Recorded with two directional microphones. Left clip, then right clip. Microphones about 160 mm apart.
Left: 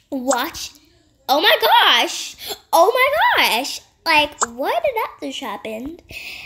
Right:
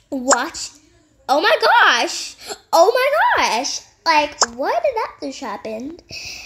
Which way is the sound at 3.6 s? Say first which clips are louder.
Right 1 dB; 60° left (ahead or behind).